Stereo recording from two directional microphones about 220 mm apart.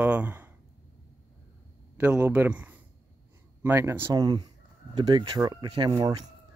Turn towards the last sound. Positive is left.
turn(degrees=-20)  # may be behind; listen again after turning